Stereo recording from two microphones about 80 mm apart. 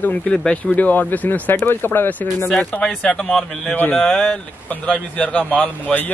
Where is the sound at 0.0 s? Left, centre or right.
Left.